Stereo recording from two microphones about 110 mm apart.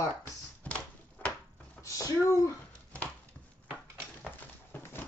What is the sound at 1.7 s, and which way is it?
Speech, 30° left (ahead or behind).